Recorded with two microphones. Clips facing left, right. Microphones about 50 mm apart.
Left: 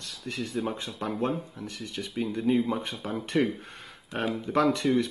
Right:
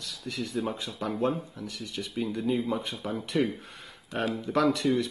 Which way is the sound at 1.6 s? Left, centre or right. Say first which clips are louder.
Even; centre.